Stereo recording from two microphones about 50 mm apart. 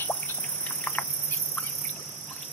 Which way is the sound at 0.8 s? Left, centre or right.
Left.